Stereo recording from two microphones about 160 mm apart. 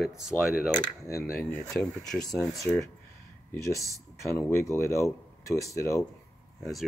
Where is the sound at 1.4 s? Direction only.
5° left (ahead or behind).